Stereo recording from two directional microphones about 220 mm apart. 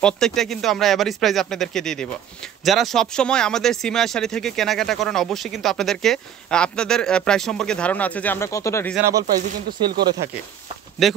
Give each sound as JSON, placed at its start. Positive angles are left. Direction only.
{"t": 0.0, "sound": "speech", "side_deg": 0}
{"t": 9.8, "sound": "speech", "side_deg": -45}
{"t": 11.0, "sound": "speech", "side_deg": 0}